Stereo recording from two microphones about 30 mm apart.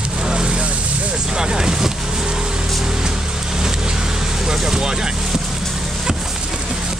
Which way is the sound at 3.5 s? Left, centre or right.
Centre.